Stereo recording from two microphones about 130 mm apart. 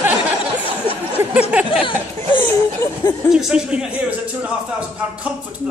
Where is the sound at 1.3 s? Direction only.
10° right (ahead or behind).